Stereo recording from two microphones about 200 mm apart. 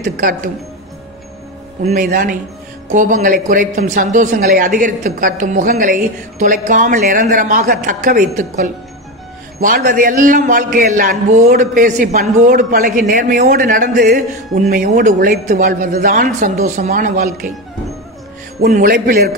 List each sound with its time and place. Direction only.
0.0 s a woman's voice: 40° right (ahead or behind)
2.0 s a man's voice: 45° right (ahead or behind)
18.7 s a man's voice: 45° right (ahead or behind)